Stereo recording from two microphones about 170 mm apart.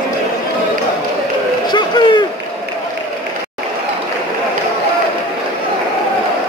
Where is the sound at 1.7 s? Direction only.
25° left (ahead or behind).